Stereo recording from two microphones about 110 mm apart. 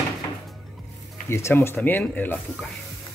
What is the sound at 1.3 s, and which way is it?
Speech, 25° left (ahead or behind).